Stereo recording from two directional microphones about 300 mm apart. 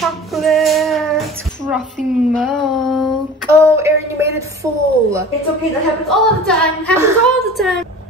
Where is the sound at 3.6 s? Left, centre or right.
Centre.